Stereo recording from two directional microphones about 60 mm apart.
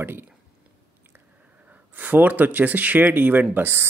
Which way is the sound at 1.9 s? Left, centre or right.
Right.